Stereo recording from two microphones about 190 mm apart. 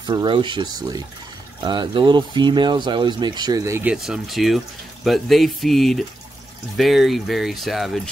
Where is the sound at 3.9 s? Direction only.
Centre (ahead or behind).